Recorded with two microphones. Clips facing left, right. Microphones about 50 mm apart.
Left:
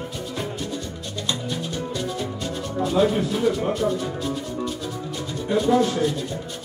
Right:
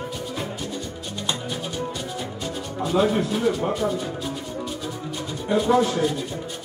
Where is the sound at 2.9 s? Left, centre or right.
Centre.